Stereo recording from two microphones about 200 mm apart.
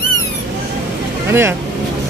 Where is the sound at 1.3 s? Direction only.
10° right (ahead or behind).